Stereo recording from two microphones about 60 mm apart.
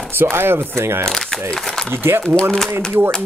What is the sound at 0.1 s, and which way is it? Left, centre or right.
Speech, right.